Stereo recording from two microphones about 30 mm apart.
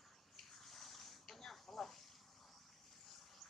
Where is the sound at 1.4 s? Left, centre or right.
Centre.